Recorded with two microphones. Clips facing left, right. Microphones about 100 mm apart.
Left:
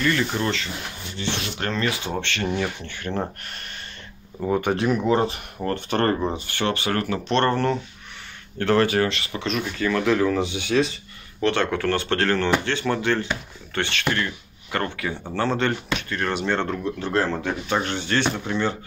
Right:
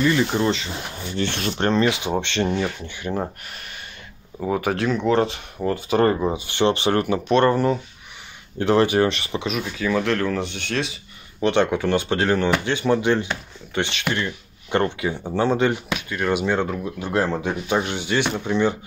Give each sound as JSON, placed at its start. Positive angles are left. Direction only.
{"t": 0.0, "sound": "speech", "side_deg": -15}
{"t": 1.1, "sound": "speech", "side_deg": -50}
{"t": 1.6, "sound": "speech", "side_deg": -25}
{"t": 6.4, "sound": "speech", "side_deg": -20}
{"t": 7.2, "sound": "speech", "side_deg": -10}
{"t": 9.5, "sound": "speech", "side_deg": -5}
{"t": 11.4, "sound": "speech", "side_deg": -20}